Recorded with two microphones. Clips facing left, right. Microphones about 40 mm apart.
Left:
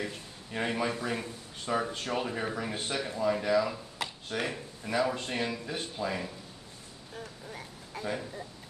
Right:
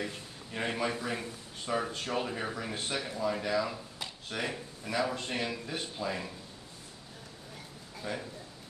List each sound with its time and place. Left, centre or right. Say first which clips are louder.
0.0 s speech: left 1 dB; centre
8.0 s speech: left 3 dB; centre